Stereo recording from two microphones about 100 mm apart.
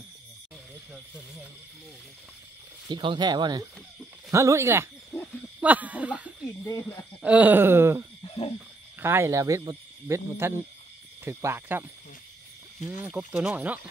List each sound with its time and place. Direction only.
2.9 s speech: 50° right (ahead or behind)
4.3 s speech: 30° right (ahead or behind)
5.6 s speech: 15° right (ahead or behind)
8.2 s cricket: 70° left (ahead or behind)
9.0 s speech: 25° right (ahead or behind)
13.2 s speech: 5° right (ahead or behind)